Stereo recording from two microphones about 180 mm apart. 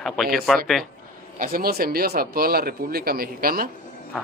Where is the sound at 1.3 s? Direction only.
50° right (ahead or behind).